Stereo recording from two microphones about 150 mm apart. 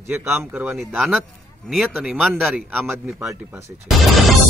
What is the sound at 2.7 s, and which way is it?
Speech, 10° right (ahead or behind).